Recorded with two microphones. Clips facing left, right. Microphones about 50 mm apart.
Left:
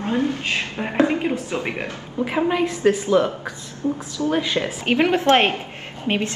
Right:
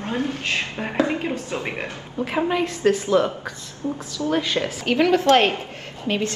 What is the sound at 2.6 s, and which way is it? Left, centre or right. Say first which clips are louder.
A woman's voice: left 2 dB; centre.